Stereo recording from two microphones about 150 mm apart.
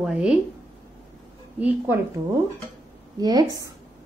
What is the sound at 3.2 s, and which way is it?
Speech, 25° right (ahead or behind).